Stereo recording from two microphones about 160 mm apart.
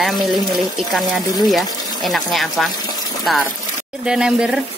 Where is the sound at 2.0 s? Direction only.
Centre (ahead or behind).